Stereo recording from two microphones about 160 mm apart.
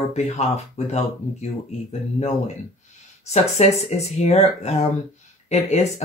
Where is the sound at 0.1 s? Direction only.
45° left (ahead or behind).